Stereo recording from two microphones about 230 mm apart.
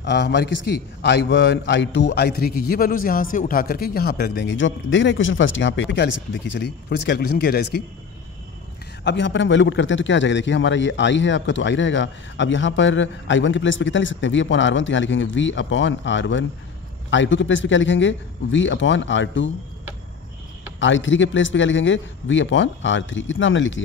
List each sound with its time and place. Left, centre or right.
0.0 s a man's voice: left
9.0 s a man's voice: left
20.8 s a man's voice: left